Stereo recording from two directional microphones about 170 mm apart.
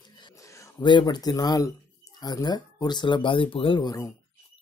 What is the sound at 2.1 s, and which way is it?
Speech, 25° left (ahead or behind).